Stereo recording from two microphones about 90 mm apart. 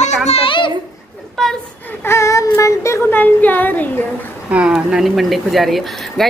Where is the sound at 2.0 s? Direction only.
30° left (ahead or behind).